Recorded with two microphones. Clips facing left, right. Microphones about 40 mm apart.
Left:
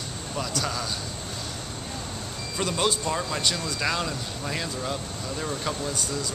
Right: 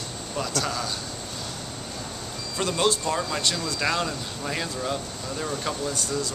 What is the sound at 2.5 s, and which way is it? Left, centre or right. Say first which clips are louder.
Speech: right 2 dB; centre.